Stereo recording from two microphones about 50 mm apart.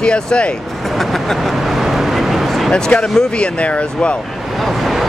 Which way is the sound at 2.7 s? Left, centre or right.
Centre.